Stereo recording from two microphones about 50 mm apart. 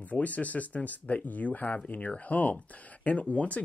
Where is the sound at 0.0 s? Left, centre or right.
Left.